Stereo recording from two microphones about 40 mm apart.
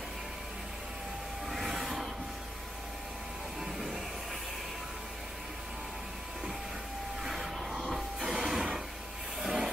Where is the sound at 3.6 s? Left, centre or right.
Centre.